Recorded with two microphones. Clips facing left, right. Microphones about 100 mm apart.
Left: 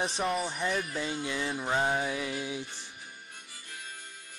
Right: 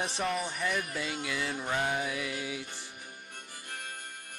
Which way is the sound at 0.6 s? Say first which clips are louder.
Left 1 dB; 30° left (ahead or behind).